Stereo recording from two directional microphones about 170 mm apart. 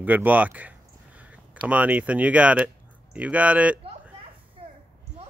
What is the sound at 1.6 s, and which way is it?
Speech, 10° right (ahead or behind).